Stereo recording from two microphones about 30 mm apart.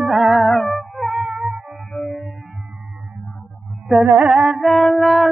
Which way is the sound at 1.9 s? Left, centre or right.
Centre.